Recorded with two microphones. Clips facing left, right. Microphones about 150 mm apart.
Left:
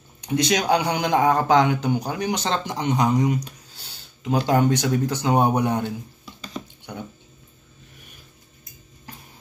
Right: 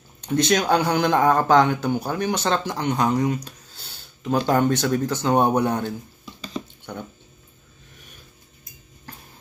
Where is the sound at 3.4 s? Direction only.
15° left (ahead or behind).